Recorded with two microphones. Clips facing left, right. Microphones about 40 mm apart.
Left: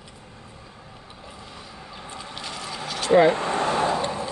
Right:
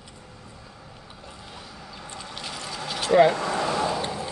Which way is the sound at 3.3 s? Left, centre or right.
Left.